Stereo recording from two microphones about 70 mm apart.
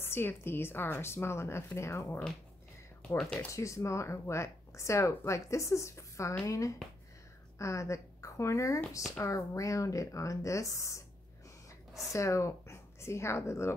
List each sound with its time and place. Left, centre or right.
0.0 s speech: left
3.3 s speech: left
12.1 s speech: left